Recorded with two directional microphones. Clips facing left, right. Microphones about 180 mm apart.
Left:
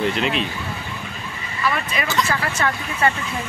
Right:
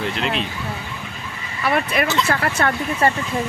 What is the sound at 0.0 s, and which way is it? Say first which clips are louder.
Speech: left 2 dB; centre (ahead or behind).